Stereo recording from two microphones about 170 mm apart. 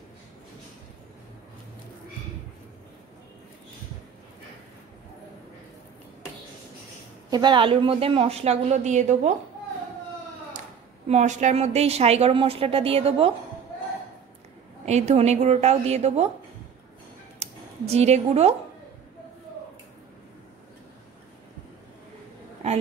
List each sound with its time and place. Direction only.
7.2 s a woman's voice: 25° right (ahead or behind); by 9.3 s 45° right (ahead or behind)
11.1 s a woman's voice: 45° right (ahead or behind)
14.9 s a woman's voice: 40° right (ahead or behind)
17.4 s speech: 40° right (ahead or behind)